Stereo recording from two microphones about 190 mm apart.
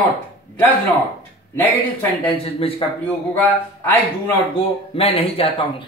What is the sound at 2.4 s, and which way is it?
Speech, 30° left (ahead or behind).